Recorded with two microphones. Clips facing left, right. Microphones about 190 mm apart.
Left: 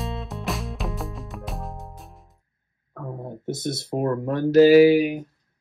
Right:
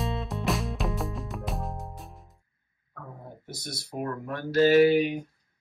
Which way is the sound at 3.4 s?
25° left (ahead or behind).